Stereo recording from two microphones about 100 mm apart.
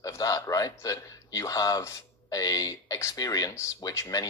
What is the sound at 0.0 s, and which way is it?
A man's voice, 35° left (ahead or behind).